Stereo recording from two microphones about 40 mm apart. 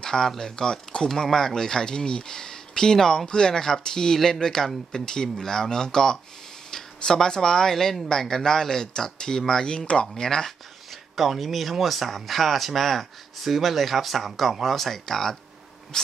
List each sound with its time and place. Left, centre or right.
0.0 s a sound: centre
0.4 s speech: centre
10.1 s speech: centre
10.9 s speech: centre